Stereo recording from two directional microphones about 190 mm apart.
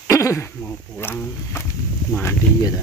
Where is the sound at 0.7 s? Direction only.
10° left (ahead or behind).